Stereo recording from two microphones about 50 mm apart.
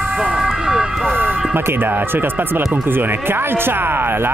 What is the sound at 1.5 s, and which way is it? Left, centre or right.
Speech, right.